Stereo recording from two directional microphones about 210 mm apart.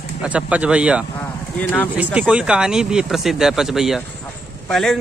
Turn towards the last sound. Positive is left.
turn(degrees=0)  # may be behind; listen again after turning